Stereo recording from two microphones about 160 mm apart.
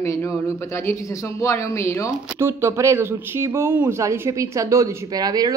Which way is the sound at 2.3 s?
15° right (ahead or behind).